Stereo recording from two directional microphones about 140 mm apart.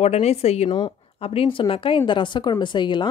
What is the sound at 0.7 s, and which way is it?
A woman's voice, 30° left (ahead or behind).